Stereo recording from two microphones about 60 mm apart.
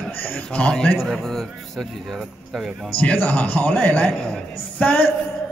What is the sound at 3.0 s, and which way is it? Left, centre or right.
A man's voice, left.